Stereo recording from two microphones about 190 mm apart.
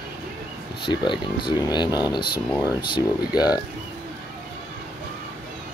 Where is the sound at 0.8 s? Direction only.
25° left (ahead or behind).